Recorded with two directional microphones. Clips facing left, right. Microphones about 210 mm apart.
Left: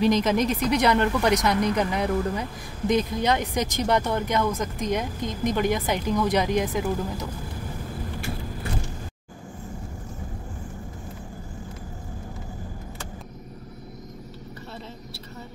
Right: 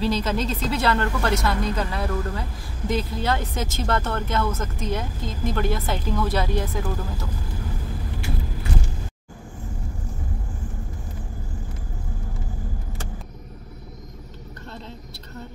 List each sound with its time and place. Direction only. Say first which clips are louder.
0.0 s speech: left 3 dB; 15° left (ahead or behind)